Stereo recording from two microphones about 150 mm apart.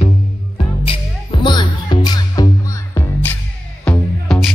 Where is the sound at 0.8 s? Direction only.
35° left (ahead or behind).